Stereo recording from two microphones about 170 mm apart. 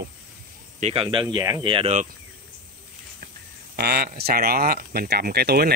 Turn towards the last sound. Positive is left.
turn(degrees=-65)  # may be behind; listen again after turning